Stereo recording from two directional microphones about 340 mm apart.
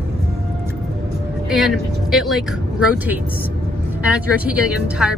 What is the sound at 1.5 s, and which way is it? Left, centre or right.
Speech, centre.